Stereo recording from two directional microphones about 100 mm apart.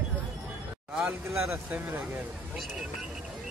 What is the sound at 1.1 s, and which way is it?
Speech, 15° right (ahead or behind).